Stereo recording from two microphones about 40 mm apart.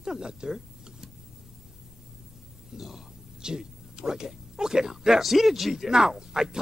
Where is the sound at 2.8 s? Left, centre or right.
Centre.